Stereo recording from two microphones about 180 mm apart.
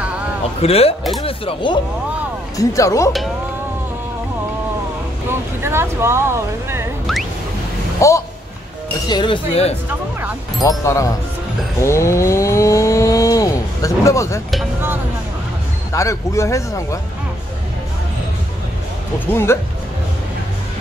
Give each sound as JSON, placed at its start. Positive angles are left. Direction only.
{"t": 0.6, "sound": "speech", "side_deg": 35}
{"t": 2.5, "sound": "a man's voice", "side_deg": 20}
{"t": 5.6, "sound": "speech", "side_deg": -15}
{"t": 8.0, "sound": "a man's voice", "side_deg": 15}
{"t": 9.1, "sound": "speech", "side_deg": 25}
{"t": 10.6, "sound": "a man's voice", "side_deg": 15}
{"t": 11.8, "sound": "a sound", "side_deg": 15}
{"t": 15.9, "sound": "a man's voice", "side_deg": 15}
{"t": 19.1, "sound": "a man's voice", "side_deg": 15}